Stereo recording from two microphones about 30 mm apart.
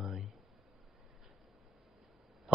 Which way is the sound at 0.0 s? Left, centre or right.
Centre.